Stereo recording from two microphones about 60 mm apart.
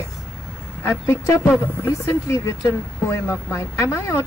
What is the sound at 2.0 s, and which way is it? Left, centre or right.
A woman's voice, left.